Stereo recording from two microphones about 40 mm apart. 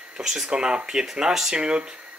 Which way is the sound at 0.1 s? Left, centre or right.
Centre.